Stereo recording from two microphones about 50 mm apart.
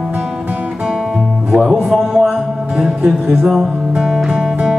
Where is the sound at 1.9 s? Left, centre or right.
Centre.